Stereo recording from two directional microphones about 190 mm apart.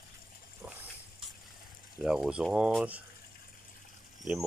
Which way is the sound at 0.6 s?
5° right (ahead or behind).